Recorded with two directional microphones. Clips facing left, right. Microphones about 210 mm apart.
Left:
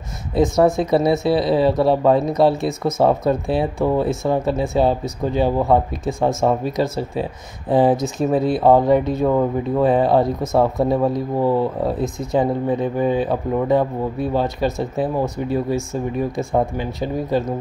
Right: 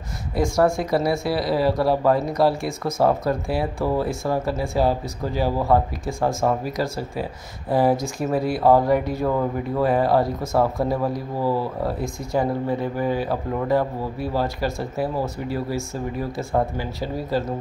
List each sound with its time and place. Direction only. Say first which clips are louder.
0.3 s speech: left 4 dB; 20° left (ahead or behind)